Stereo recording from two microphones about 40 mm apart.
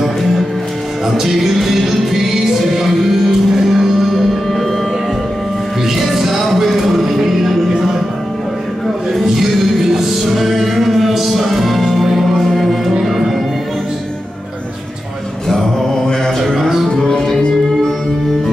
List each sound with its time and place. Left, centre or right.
1.0 s music: centre
5.9 s music: centre
9.1 s music: centre
16.5 s music: centre
16.9 s music: centre